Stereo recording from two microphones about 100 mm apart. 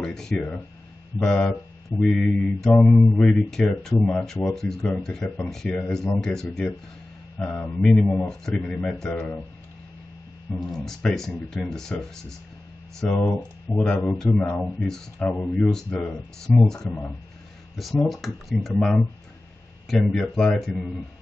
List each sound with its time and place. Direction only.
0.0 s speech: 5° left (ahead or behind)
2.8 s mantra: 20° left (ahead or behind)
3.2 s speech: 5° left (ahead or behind)
10.7 s speech: 5° left (ahead or behind)